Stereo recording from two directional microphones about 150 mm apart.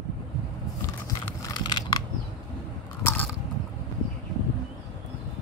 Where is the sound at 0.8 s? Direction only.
25° left (ahead or behind).